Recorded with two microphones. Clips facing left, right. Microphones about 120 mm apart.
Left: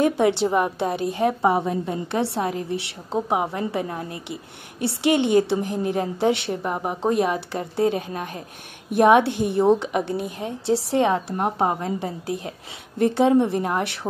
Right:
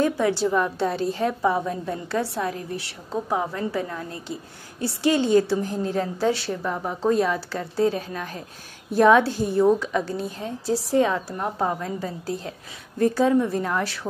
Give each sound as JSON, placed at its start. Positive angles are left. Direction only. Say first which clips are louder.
{"t": 0.0, "sound": "a woman's voice", "louder": "left 2 dB", "side_deg": 25}
{"t": 11.2, "sound": "a woman's voice", "louder": "left 3 dB", "side_deg": 30}